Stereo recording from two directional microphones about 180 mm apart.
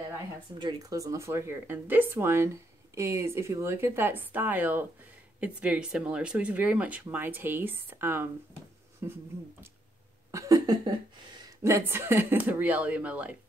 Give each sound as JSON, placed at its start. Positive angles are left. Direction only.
{"t": 0.6, "sound": "speech", "side_deg": -25}
{"t": 10.3, "sound": "a sound", "side_deg": -20}
{"t": 11.6, "sound": "speech", "side_deg": -15}